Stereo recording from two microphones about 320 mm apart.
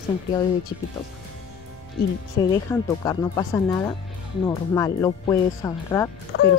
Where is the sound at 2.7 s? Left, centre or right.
Centre.